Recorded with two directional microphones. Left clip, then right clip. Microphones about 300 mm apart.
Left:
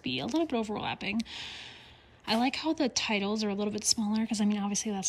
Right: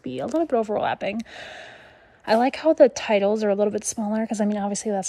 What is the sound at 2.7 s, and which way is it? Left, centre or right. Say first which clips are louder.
Speech: right 13 dB; centre.